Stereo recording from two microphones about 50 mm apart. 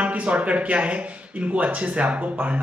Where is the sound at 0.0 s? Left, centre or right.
Right.